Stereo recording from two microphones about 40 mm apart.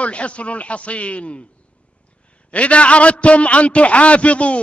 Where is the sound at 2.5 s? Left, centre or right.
Left.